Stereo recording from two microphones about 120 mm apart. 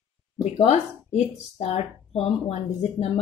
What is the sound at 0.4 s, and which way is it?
Speech, 65° left (ahead or behind).